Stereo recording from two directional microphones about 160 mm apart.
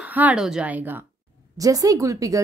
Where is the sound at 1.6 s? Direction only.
20° right (ahead or behind).